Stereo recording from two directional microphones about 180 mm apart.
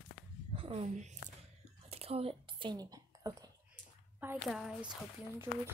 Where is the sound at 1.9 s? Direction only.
35° right (ahead or behind).